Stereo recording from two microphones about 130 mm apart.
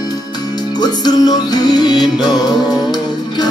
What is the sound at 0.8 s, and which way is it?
Music, 30° left (ahead or behind).